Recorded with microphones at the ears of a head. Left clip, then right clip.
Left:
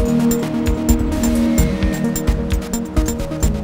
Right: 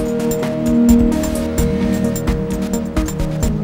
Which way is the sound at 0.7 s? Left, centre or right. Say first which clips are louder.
Right 6 dB; right.